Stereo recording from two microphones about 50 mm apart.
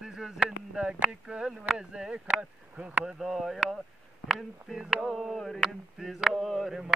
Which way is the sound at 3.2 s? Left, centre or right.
Centre.